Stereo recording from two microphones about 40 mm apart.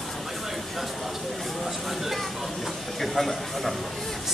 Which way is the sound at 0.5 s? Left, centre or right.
Centre.